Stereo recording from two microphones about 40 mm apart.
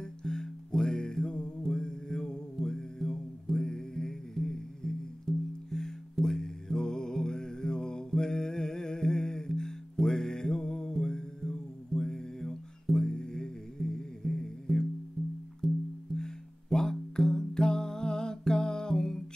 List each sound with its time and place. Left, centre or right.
0.0 s music: centre